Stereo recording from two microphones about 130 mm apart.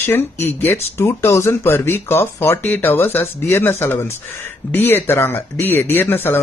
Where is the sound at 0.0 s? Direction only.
15° left (ahead or behind).